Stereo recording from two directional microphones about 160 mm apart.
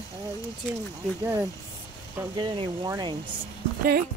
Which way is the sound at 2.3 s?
30° right (ahead or behind).